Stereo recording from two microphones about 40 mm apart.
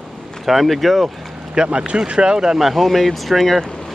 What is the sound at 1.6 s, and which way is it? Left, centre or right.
Speech, right.